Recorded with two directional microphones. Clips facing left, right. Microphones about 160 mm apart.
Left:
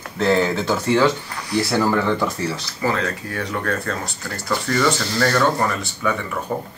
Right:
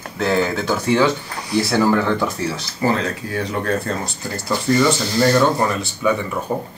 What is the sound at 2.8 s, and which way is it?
Speech, 35° right (ahead or behind).